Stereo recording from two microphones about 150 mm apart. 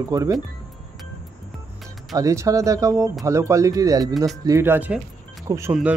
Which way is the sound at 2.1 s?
20° right (ahead or behind).